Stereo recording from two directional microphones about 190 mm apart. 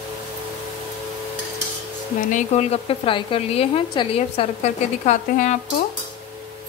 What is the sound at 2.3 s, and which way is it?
A woman's voice, 35° left (ahead or behind).